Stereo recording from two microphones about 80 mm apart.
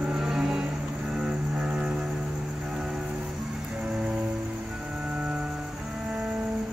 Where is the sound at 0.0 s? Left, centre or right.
Centre.